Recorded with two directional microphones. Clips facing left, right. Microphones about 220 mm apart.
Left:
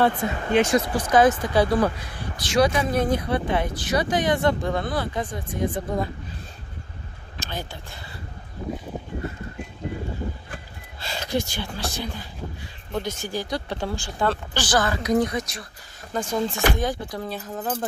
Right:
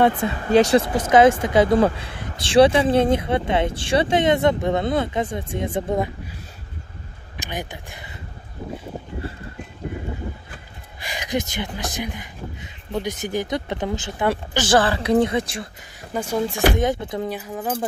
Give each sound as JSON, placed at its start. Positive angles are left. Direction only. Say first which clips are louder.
{"t": 0.5, "sound": "speech", "louder": "right 5 dB", "side_deg": -35}
{"t": 0.9, "sound": "speech", "louder": "right 3 dB", "side_deg": -25}
{"t": 7.3, "sound": "speech", "louder": "right 3 dB", "side_deg": -15}
{"t": 11.0, "sound": "speech", "louder": "right 1 dB", "side_deg": -15}
{"t": 16.1, "sound": "speech", "louder": "right 2 dB", "side_deg": -10}
{"t": 16.7, "sound": "speech", "louder": "right 5 dB", "side_deg": -20}
{"t": 17.4, "sound": "speech", "louder": "right 2 dB", "side_deg": -10}